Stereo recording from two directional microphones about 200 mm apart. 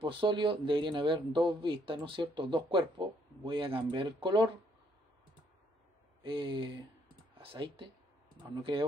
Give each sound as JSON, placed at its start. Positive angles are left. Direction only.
{"t": 0.0, "sound": "speech", "side_deg": -25}
{"t": 6.2, "sound": "speech", "side_deg": -25}